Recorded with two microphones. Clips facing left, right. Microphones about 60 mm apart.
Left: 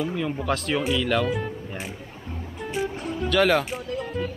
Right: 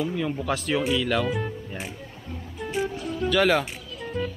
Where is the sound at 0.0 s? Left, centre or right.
Centre.